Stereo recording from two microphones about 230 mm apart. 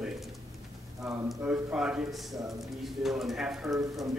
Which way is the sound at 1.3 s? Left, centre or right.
Centre.